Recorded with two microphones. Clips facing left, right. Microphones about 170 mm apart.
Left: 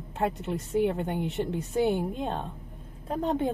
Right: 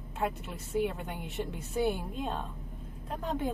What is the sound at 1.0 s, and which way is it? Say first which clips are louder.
Speech: left 8 dB; 25° left (ahead or behind).